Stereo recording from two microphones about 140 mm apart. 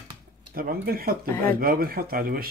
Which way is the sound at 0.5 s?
90° right.